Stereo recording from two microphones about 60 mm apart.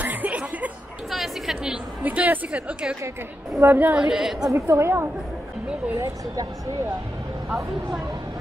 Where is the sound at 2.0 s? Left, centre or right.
Right.